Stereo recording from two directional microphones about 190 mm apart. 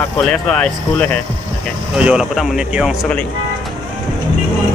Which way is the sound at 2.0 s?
5° right (ahead or behind).